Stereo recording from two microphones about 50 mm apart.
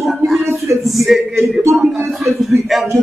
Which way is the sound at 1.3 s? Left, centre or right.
Right.